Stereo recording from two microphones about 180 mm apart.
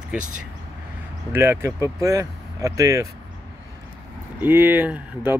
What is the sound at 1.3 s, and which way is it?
Speech, 10° right (ahead or behind).